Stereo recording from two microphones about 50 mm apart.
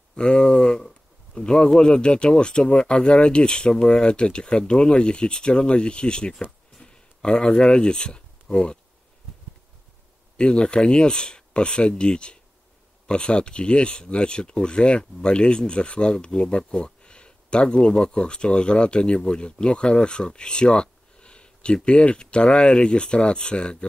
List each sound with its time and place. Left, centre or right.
0.1 s a sound: centre
1.8 s speech: centre
10.3 s speech: left